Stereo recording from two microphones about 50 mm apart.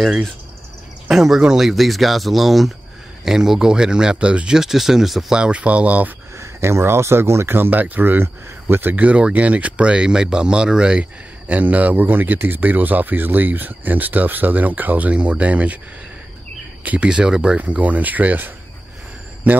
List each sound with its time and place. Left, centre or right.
1.1 s speech: centre
4.6 s speech: centre
5.3 s speech: right
6.3 s speech: right
16.8 s speech: right
17.1 s speech: centre
17.6 s speech: right